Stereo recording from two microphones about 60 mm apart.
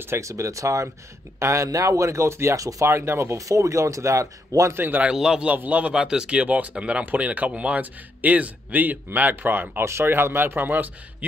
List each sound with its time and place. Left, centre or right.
0.0 s speech: right
0.3 s speech: right
2.6 s speech: right
3.0 s speech: right
3.3 s speech: right
4.7 s a man's voice: right
5.1 s a man's voice: centre
5.5 s a man's voice: right